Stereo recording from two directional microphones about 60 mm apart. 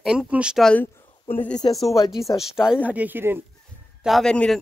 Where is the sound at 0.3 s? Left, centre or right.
Centre.